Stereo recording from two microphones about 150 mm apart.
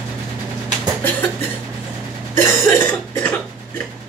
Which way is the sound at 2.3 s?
15° left (ahead or behind).